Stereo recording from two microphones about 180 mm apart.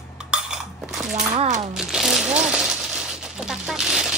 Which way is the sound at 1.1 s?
45° right (ahead or behind).